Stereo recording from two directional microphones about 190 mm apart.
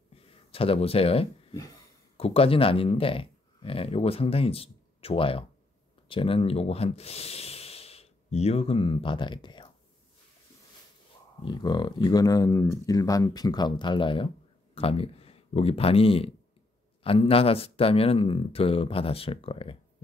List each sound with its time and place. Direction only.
0.5 s speech: 30° left (ahead or behind)
11.4 s speech: 20° left (ahead or behind)